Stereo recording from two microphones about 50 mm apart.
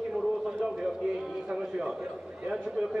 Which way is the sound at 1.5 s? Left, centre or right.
Centre.